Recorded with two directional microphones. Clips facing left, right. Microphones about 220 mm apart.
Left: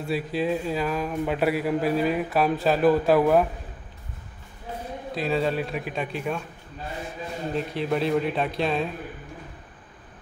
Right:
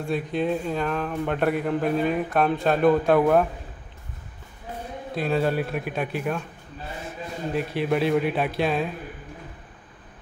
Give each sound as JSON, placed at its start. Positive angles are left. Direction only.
{"t": 0.0, "sound": "speech", "side_deg": 5}
{"t": 5.1, "sound": "speech", "side_deg": 0}
{"t": 7.5, "sound": "speech", "side_deg": -5}